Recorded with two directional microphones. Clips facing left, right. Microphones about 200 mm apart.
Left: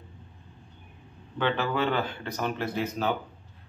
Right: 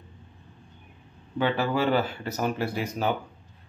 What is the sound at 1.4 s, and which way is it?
Speech, 10° right (ahead or behind).